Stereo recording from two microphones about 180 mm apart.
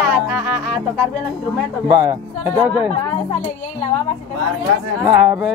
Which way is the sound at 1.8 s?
10° right (ahead or behind).